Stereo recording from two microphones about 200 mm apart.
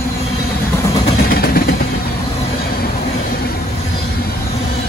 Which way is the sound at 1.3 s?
50° left (ahead or behind).